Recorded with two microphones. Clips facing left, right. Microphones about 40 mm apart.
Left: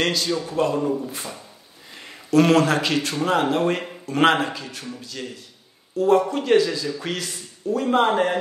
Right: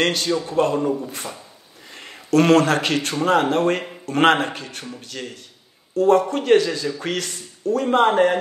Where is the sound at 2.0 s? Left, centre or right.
Right.